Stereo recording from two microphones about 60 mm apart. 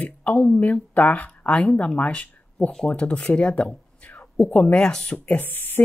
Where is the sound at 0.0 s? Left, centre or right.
Left.